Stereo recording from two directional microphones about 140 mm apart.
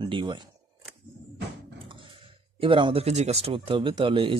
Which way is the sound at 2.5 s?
35° right (ahead or behind).